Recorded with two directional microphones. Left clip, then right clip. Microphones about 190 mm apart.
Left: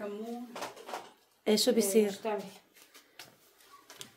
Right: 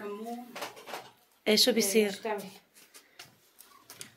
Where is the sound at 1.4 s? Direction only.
5° left (ahead or behind).